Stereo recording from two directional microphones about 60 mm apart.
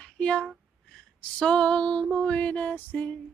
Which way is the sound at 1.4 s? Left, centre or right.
Centre.